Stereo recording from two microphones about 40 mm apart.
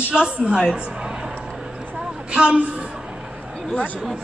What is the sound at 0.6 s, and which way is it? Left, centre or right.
Speech, centre.